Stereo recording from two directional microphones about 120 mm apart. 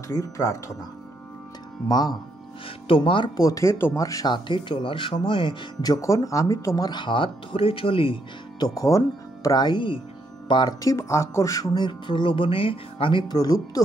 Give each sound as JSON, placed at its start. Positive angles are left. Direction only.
{"t": 0.1, "sound": "speech", "side_deg": 25}
{"t": 1.9, "sound": "speech", "side_deg": 35}
{"t": 2.9, "sound": "speech", "side_deg": 45}
{"t": 3.3, "sound": "speech", "side_deg": 30}
{"t": 5.9, "sound": "speech", "side_deg": 25}
{"t": 6.9, "sound": "speech", "side_deg": 40}
{"t": 8.6, "sound": "speech", "side_deg": 30}